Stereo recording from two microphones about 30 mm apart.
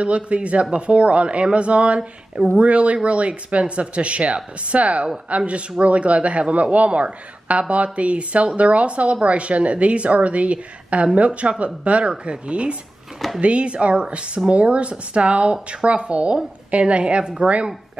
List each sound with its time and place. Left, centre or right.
0.0 s speech: right
17.4 s speech: right